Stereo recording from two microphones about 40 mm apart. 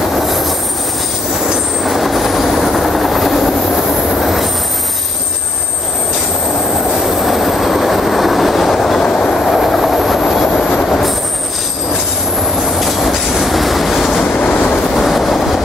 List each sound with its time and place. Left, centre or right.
0.1 s train: centre
1.8 s train: centre
7.2 s train: centre
9.0 s train: left
9.5 s train: centre
12.7 s train: centre
14.4 s train: left
15.0 s train: centre